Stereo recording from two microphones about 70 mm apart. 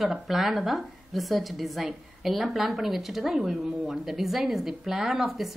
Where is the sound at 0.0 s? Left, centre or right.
Centre.